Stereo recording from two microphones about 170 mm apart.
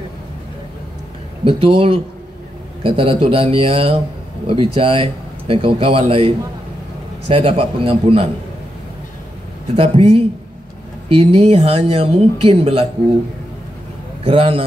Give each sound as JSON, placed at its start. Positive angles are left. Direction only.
{"t": 1.4, "sound": "a man's voice", "side_deg": -30}
{"t": 9.8, "sound": "a man's voice", "side_deg": -35}
{"t": 14.2, "sound": "a man's voice", "side_deg": -35}